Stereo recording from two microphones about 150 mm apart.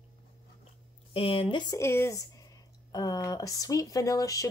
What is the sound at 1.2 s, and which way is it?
Speech, 35° left (ahead or behind).